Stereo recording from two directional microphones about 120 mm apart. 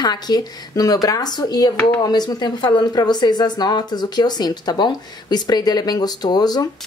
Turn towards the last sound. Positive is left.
turn(degrees=35)  # may be behind; listen again after turning